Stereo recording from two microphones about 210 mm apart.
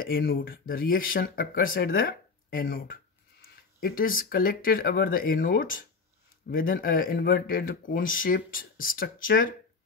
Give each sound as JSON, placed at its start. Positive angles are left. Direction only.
{"t": 0.0, "sound": "a man's voice", "side_deg": 45}